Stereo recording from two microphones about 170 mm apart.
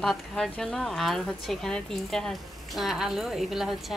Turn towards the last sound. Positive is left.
turn(degrees=0)  # may be behind; listen again after turning